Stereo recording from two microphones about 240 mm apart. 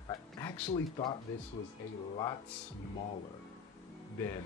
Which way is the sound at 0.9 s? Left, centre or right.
Left.